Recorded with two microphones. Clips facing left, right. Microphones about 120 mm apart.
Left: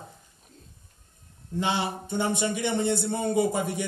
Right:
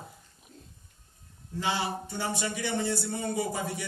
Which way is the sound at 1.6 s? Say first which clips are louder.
Left 3 dB; 25° left (ahead or behind).